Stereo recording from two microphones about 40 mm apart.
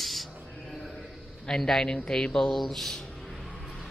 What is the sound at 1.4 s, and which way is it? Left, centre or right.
Speech, centre.